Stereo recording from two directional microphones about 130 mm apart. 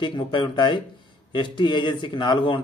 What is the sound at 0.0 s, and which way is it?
Speech, 35° left (ahead or behind).